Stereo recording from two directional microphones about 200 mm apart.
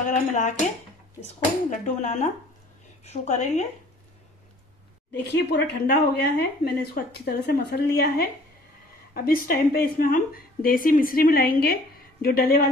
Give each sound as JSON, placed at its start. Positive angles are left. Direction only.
{"t": 0.1, "sound": "speech", "side_deg": 35}
{"t": 5.2, "sound": "a woman's voice", "side_deg": 60}